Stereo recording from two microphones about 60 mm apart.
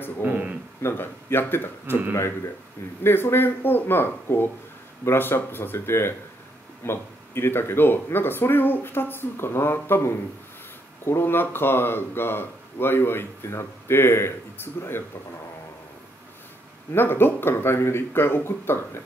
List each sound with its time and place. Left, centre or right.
0.2 s speech: right
0.8 s speech: left
1.9 s speech: right
2.1 s speech: left
16.9 s speech: left